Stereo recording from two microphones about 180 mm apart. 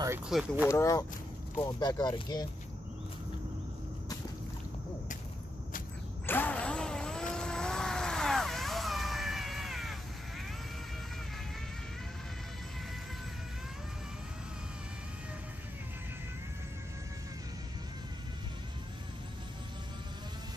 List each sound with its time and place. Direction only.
0.3 s speech: 5° right (ahead or behind)
0.7 s speech: 15° left (ahead or behind)
6.2 s vehicle: 10° left (ahead or behind)